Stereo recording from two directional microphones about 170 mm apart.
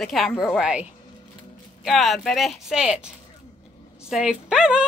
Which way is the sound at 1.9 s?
Centre (ahead or behind).